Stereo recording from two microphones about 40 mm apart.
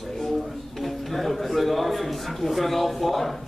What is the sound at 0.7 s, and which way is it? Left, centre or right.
Speech, centre.